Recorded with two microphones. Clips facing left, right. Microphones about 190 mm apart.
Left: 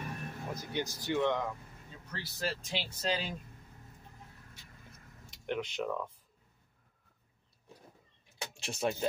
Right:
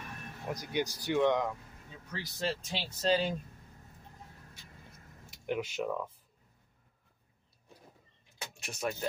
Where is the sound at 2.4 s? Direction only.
30° right (ahead or behind).